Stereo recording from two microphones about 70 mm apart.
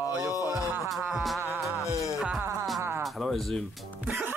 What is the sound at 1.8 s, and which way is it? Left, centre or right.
Music, left.